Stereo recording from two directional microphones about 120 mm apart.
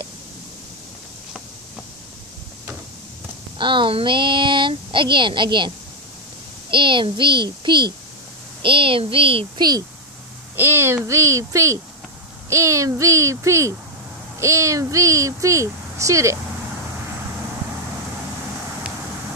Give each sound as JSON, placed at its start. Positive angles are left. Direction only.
{"t": 3.5, "sound": "speech", "side_deg": -45}
{"t": 6.7, "sound": "speech", "side_deg": -45}
{"t": 9.6, "sound": "speech", "side_deg": -35}
{"t": 10.5, "sound": "speech", "side_deg": -20}